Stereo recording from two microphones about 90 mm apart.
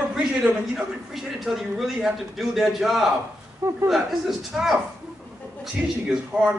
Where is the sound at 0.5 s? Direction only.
5° right (ahead or behind).